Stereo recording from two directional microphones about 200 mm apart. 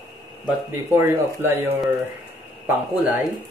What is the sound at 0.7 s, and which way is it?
Speech, 10° right (ahead or behind).